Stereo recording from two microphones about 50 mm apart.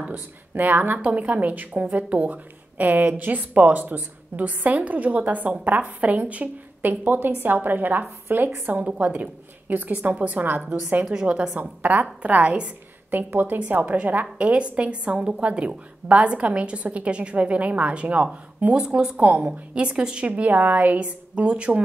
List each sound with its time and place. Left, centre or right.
0.1 s a woman's voice: right
8.7 s a woman's voice: right
11.1 s a woman's voice: right
13.1 s a woman's voice: right
14.4 s a woman's voice: right
19.1 s a woman's voice: right
20.2 s a woman's voice: right